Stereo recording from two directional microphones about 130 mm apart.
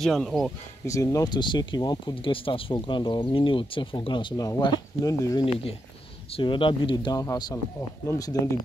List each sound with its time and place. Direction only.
0.0 s speech: 5° left (ahead or behind)
0.8 s speech: 25° left (ahead or behind)
5.4 s speech: 45° left (ahead or behind); by 8.5 s 25° left (ahead or behind)